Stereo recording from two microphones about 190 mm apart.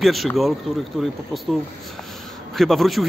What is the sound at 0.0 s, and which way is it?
A man's voice, centre (ahead or behind).